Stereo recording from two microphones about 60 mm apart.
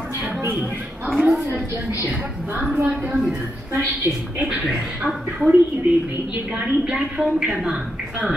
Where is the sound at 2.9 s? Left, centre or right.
Right.